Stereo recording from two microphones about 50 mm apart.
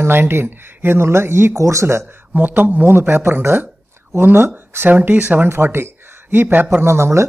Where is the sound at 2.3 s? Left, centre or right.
Right.